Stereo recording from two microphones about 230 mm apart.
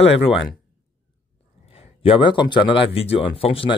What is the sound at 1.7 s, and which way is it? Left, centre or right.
Speech, left.